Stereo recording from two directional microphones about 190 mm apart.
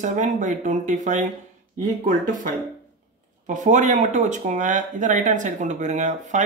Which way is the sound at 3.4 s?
40° right (ahead or behind).